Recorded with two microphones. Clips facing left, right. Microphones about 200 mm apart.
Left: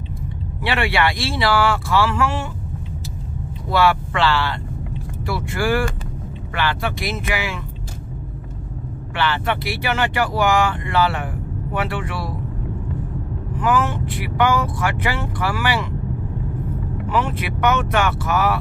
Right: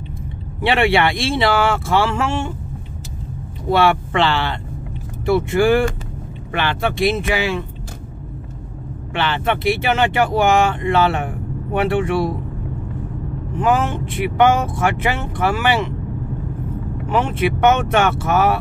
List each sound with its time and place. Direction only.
0.6 s speech: 25° right (ahead or behind)
3.7 s speech: 25° right (ahead or behind)
9.1 s speech: 20° right (ahead or behind)
13.6 s speech: 25° right (ahead or behind)
17.1 s speech: 25° right (ahead or behind)